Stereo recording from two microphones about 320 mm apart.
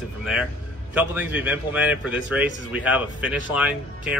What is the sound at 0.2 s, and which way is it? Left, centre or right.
Speech, centre.